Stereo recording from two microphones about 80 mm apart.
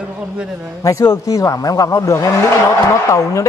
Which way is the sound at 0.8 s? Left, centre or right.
Left.